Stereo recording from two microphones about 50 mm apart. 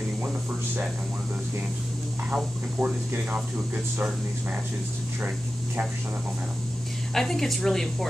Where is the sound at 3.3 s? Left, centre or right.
Right.